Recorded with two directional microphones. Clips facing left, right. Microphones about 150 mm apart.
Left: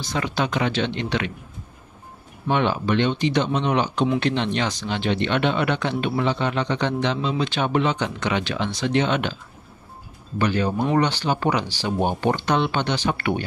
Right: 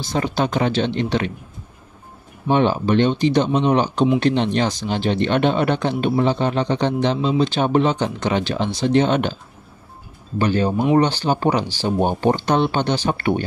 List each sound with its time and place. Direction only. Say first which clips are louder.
0.0 s speech: right 4 dB; 35° right (ahead or behind)
2.5 s speech: right 4 dB; 35° right (ahead or behind)
10.4 s speech: right 3 dB; 30° right (ahead or behind)
10.7 s speech: right 4 dB; 15° right (ahead or behind)
11.0 s speech: right 4 dB; 35° right (ahead or behind)